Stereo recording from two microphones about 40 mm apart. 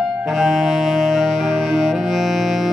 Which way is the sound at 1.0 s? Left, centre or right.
Centre.